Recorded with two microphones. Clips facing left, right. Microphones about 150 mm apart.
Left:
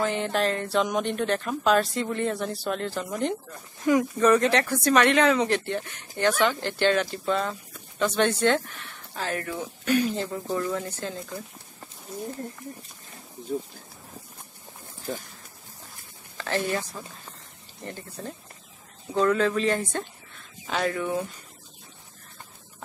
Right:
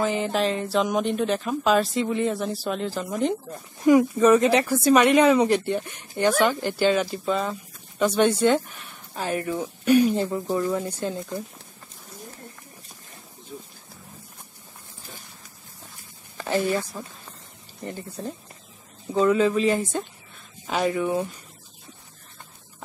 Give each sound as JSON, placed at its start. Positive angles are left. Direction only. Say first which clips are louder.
{"t": 0.0, "sound": "speech", "louder": "right 2 dB", "side_deg": -5}
{"t": 16.3, "sound": "a sound", "louder": "right 4 dB", "side_deg": -10}
{"t": 17.0, "sound": "speech", "louder": "right 2 dB", "side_deg": -15}